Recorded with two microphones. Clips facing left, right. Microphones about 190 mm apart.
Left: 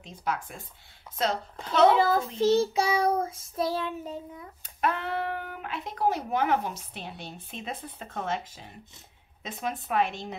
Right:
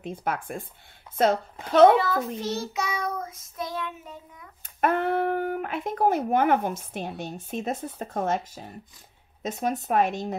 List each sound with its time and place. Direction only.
0.0 s speech: 55° right (ahead or behind)
2.0 s child singing: 30° left (ahead or behind)
4.6 s speech: 50° right (ahead or behind)